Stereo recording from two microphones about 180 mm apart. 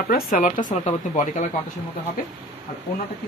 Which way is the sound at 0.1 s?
50° left (ahead or behind).